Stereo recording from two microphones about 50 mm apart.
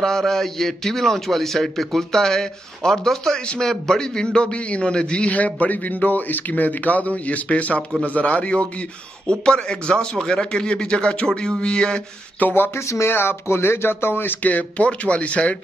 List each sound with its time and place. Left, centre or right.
0.0 s a man's voice: centre
12.4 s speech: left
12.7 s speech: left
13.1 s speech: left
14.5 s a man's voice: left